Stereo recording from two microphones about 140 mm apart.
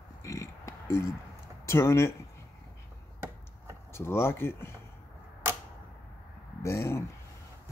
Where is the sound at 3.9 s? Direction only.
20° left (ahead or behind).